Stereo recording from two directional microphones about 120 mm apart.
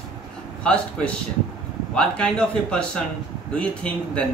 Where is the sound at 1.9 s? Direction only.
5° left (ahead or behind).